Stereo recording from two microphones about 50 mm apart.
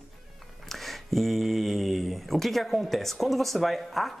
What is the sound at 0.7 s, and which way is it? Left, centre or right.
Speech, centre.